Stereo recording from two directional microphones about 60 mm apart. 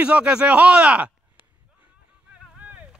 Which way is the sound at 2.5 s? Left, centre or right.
Right.